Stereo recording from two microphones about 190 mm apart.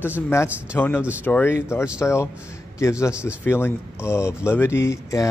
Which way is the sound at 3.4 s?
10° left (ahead or behind).